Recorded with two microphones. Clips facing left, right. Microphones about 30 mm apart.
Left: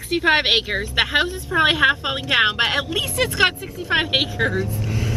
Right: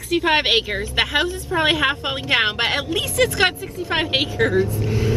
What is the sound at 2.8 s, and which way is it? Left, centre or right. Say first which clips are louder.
A woman's voice: right 2 dB; centre.